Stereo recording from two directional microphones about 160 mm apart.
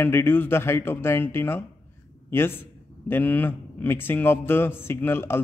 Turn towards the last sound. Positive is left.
turn(degrees=15)  # may be behind; listen again after turning